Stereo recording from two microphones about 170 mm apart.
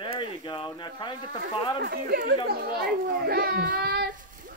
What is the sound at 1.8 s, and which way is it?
A child's voice, 70° right (ahead or behind).